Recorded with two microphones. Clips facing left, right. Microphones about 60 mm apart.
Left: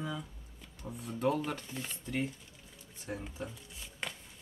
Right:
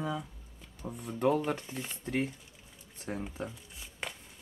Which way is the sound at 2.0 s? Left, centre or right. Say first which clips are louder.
Right 3 dB; right.